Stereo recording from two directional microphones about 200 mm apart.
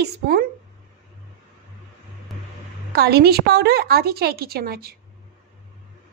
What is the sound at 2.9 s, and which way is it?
A woman's voice, 55° right (ahead or behind).